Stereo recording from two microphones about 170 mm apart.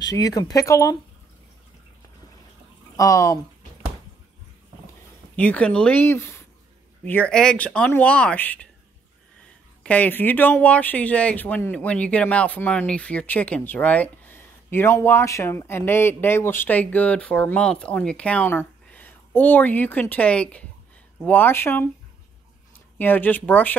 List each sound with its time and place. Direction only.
0.1 s speech: 20° left (ahead or behind)
3.0 s speech: 20° left (ahead or behind)
5.3 s speech: 10° left (ahead or behind)
9.8 s speech: 10° left (ahead or behind)
22.9 s speech: 10° left (ahead or behind)